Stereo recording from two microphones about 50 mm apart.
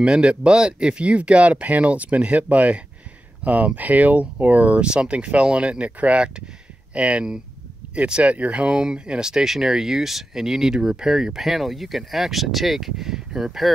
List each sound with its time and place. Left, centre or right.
0.0 s speech: centre
4.8 s speech: centre